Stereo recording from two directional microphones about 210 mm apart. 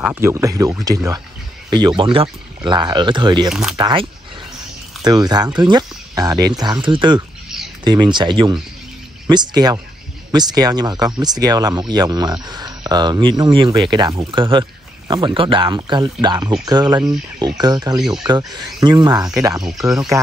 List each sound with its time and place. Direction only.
0.0 s speech: 10° right (ahead or behind)